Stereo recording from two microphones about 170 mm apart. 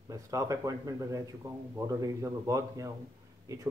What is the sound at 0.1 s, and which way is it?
Speech, 20° right (ahead or behind).